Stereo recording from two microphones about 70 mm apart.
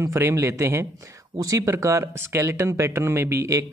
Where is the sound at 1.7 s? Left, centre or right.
Right.